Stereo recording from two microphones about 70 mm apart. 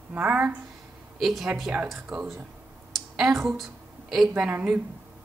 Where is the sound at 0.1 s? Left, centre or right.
Right.